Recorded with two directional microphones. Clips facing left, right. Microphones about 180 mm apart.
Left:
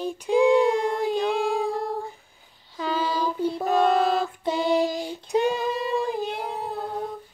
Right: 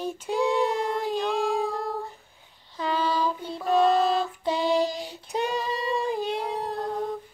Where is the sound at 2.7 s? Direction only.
5° left (ahead or behind).